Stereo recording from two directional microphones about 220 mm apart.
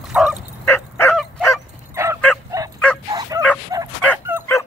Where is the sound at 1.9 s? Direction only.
10° right (ahead or behind).